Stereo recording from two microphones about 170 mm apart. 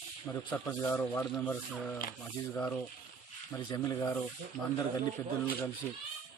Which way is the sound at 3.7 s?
20° left (ahead or behind).